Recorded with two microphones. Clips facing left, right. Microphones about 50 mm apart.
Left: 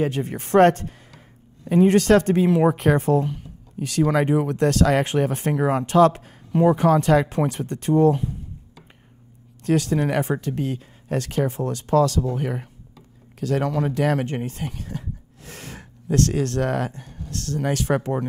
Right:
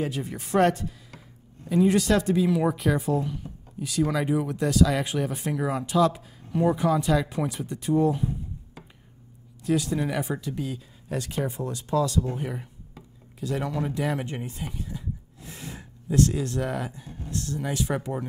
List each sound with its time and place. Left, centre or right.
0.0 s speech: left
9.6 s speech: left